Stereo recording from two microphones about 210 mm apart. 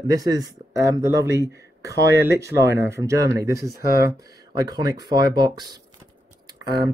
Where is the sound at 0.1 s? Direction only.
15° right (ahead or behind).